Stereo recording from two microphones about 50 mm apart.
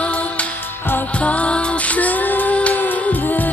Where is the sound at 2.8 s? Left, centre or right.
Left.